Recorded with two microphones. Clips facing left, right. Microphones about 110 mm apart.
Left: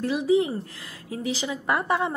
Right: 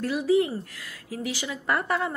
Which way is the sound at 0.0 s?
20° left (ahead or behind).